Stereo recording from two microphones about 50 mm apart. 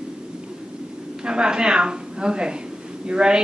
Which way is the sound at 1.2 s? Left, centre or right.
Centre.